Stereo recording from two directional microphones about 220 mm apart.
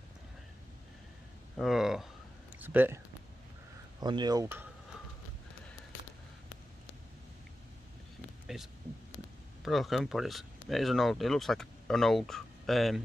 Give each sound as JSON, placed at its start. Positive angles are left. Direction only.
{"t": 1.6, "sound": "speech", "side_deg": 0}
{"t": 4.0, "sound": "speech", "side_deg": -20}
{"t": 8.5, "sound": "speech", "side_deg": 0}